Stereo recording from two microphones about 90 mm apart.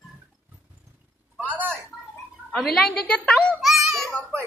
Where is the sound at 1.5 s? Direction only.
10° left (ahead or behind).